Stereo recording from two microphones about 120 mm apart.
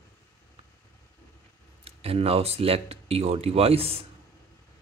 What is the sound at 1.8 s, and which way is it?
Speech, 55° right (ahead or behind).